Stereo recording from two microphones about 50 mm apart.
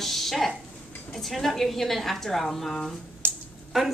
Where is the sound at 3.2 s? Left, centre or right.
Right.